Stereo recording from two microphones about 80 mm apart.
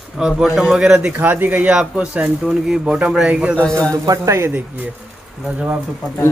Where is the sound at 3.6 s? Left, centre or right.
Centre.